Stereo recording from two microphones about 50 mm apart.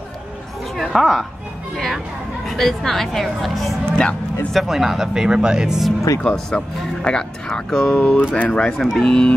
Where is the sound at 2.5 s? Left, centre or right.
Centre.